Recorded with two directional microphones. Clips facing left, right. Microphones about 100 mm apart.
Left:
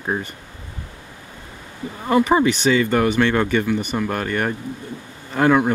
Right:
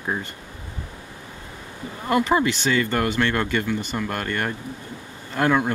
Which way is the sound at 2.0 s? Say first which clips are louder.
Left 4 dB; 15° left (ahead or behind).